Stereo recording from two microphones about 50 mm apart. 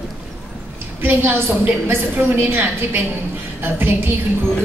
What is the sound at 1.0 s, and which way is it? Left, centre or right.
A woman's voice, right.